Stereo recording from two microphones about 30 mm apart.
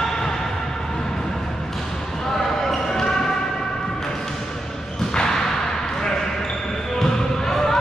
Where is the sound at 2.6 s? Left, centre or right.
Centre.